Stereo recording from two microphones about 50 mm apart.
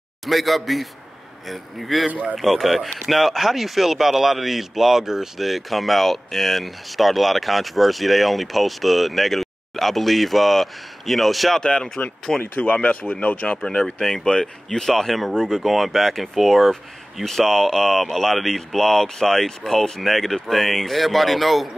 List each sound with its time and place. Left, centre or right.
0.2 s speech: centre
2.0 s speech: right
2.3 s speech: centre
11.6 s speech: centre
12.4 s speech: left
13.6 s speech: centre